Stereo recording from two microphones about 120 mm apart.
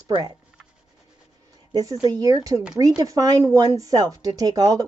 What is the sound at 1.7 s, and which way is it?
Speech, 30° right (ahead or behind).